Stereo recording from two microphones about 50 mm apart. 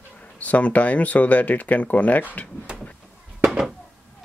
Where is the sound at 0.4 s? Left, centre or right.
Left.